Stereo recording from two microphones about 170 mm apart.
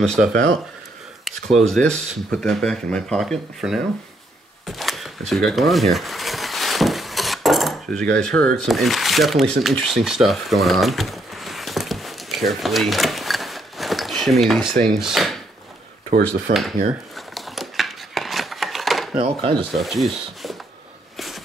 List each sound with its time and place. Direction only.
0.0 s speech: 5° left (ahead or behind)
0.3 s speech: 65° right (ahead or behind)
1.2 s speech: centre (ahead or behind)
4.6 s a sound: centre (ahead or behind)
8.5 s speech: centre (ahead or behind)
17.3 s a sound: centre (ahead or behind)
19.1 s speech: 35° right (ahead or behind)
19.5 s rub: centre (ahead or behind)